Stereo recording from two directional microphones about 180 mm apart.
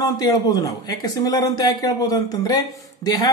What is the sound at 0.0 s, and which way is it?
A woman's voice, 20° left (ahead or behind).